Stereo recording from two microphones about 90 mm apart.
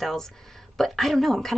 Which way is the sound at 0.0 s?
5° left (ahead or behind).